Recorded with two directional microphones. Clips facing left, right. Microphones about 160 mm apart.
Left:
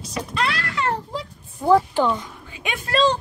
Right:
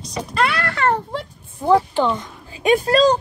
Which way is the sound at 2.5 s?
35° right (ahead or behind).